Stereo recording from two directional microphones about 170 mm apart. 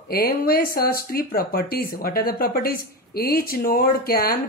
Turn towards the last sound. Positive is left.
turn(degrees=60)  # may be behind; listen again after turning